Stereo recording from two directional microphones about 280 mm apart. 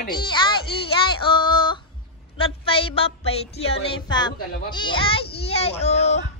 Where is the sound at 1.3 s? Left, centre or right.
Centre.